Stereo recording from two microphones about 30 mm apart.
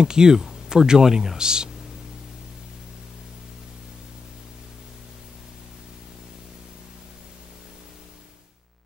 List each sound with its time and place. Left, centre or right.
0.0 s speech: right